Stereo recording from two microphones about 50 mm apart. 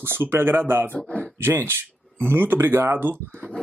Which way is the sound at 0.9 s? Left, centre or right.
Left.